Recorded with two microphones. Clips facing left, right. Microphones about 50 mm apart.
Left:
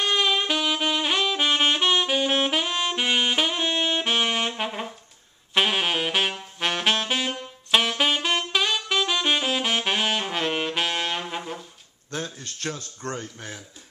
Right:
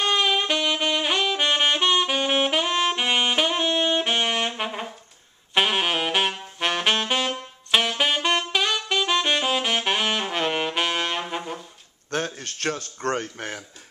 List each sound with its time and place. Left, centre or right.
0.0 s saxophone: centre
12.4 s speech: right